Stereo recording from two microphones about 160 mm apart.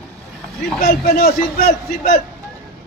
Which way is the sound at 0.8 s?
65° left (ahead or behind).